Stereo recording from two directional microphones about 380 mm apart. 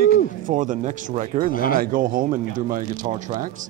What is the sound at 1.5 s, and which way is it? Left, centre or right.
Speech, left.